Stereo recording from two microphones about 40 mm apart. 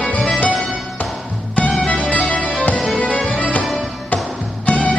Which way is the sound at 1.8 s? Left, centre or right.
Left.